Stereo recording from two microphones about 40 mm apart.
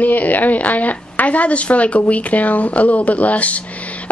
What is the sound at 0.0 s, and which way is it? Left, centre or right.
Speech, left.